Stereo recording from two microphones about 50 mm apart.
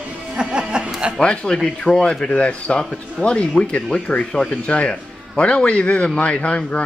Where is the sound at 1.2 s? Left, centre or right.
Left.